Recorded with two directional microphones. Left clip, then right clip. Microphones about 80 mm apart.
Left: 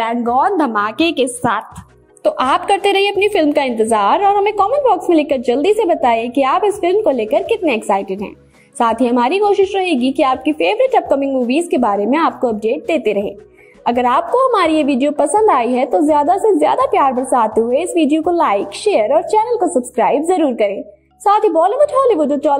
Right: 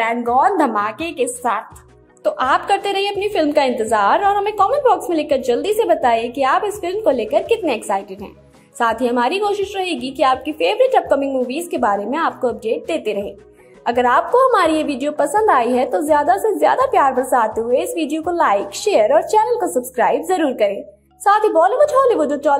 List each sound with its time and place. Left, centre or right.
0.3 s a woman's voice: left
2.3 s a woman's voice: left
4.2 s a woman's voice: left
5.1 s a woman's voice: left
7.2 s a woman's voice: left
14.3 s a woman's voice: left
14.9 s a woman's voice: left
15.1 s a woman's voice: left
18.0 s a woman's voice: centre
18.3 s a woman's voice: left
18.9 s a woman's voice: left
20.0 s a woman's voice: left
20.2 s a woman's voice: centre